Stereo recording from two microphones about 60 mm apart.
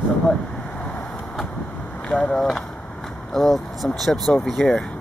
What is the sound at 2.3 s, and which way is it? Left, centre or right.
Speech, centre.